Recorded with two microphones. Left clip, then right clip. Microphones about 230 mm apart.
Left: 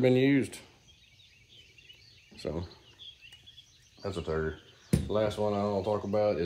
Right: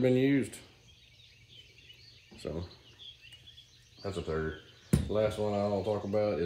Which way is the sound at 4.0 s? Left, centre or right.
Centre.